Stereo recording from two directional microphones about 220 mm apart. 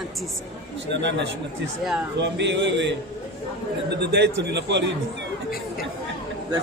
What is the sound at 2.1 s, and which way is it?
Speech, 55° right (ahead or behind).